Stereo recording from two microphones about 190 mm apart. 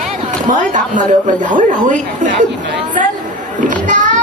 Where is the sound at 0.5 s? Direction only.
40° right (ahead or behind).